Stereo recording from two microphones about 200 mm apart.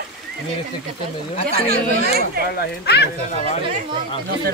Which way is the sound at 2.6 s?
55° left (ahead or behind).